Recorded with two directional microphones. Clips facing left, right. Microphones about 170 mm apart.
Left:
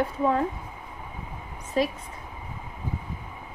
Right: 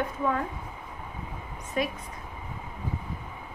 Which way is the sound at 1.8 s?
30° left (ahead or behind).